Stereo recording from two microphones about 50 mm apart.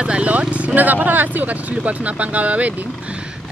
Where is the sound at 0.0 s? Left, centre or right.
Right.